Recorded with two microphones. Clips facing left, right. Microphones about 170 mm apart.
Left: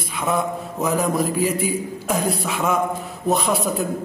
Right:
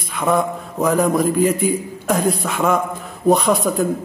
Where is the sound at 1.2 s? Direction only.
50° right (ahead or behind).